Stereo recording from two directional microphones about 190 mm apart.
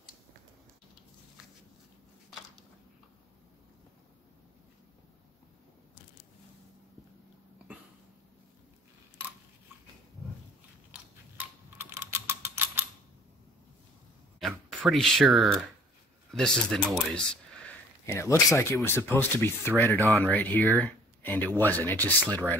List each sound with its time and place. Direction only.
11.3 s typing: 10° right (ahead or behind)
14.4 s speech: centre (ahead or behind)
20.1 s speech: centre (ahead or behind)